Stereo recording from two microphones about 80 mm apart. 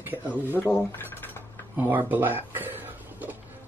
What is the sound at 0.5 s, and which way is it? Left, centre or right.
Speech, left.